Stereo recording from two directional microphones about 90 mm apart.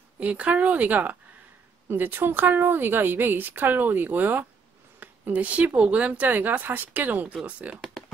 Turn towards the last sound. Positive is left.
turn(degrees=-15)  # may be behind; listen again after turning